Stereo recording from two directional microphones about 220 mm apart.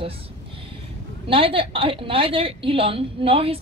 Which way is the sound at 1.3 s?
25° right (ahead or behind).